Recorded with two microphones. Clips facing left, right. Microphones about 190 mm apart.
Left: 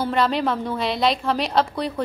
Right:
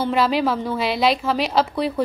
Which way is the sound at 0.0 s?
5° right (ahead or behind).